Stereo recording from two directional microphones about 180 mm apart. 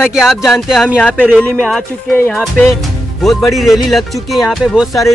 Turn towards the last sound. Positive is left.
turn(degrees=0)  # may be behind; listen again after turning